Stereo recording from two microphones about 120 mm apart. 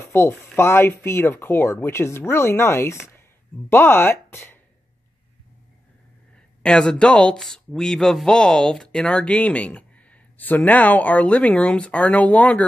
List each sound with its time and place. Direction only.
0.1 s speech: 20° left (ahead or behind)
6.6 s speech: 5° left (ahead or behind)